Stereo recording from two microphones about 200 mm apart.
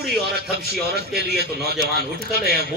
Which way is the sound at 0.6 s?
50° right (ahead or behind).